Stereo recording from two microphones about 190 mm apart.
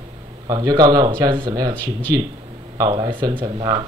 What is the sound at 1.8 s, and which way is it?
Speech, 10° left (ahead or behind).